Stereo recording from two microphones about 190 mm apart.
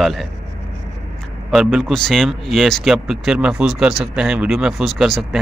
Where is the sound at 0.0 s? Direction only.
Centre (ahead or behind).